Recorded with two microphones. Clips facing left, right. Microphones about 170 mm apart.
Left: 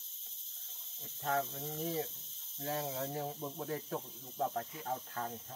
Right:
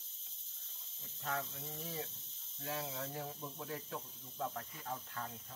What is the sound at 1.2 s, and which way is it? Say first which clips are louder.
Speech: left 6 dB; 40° left (ahead or behind).